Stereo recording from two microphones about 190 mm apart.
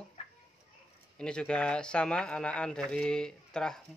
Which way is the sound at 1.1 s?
5° left (ahead or behind).